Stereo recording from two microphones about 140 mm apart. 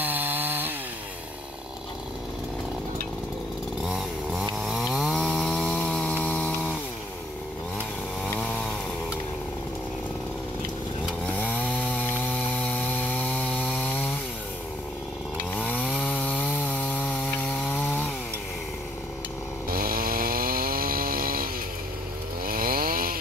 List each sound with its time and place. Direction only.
0.0 s chainsaw: 15° right (ahead or behind)
3.8 s chainsaw: 5° right (ahead or behind)
11.3 s chainsaw: 10° left (ahead or behind)
15.5 s chainsaw: 10° left (ahead or behind)
19.7 s chainsaw: 90° right
22.5 s chainsaw: 90° right